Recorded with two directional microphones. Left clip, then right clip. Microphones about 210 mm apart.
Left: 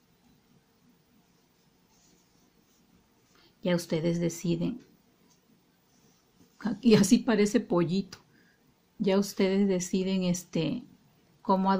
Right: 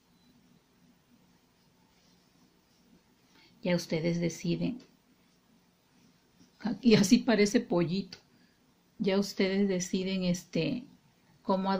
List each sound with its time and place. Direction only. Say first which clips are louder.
3.6 s speech: left 2 dB; 20° left (ahead or behind)
6.6 s speech: left 2 dB; 20° left (ahead or behind)